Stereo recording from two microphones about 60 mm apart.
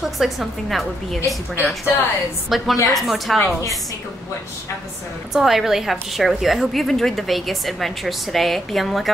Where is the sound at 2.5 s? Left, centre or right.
Centre.